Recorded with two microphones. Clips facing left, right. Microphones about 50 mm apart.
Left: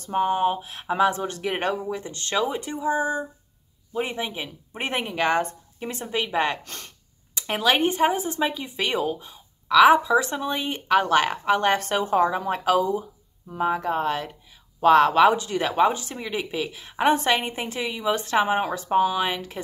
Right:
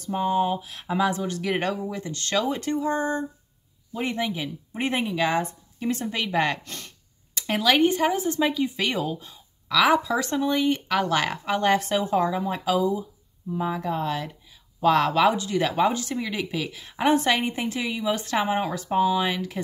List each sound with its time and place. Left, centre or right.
0.0 s speech: left
4.2 s speech: left
5.8 s a woman's voice: left
6.6 s speech: left